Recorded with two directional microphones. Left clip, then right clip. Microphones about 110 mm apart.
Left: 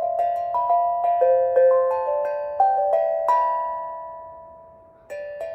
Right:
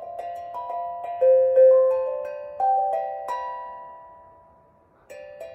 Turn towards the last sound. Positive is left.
turn(degrees=-15)  # may be behind; listen again after turning